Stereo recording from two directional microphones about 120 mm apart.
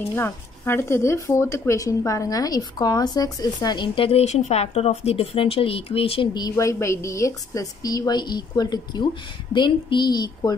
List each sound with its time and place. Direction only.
0.0 s speech: 20° left (ahead or behind); by 6.2 s 50° left (ahead or behind)
6.5 s a woman's voice: 25° left (ahead or behind)